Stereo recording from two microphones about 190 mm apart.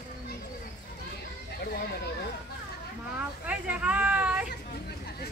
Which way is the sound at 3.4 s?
5° right (ahead or behind).